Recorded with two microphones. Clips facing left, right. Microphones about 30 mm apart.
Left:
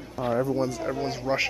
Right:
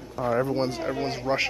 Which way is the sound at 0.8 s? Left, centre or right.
Centre.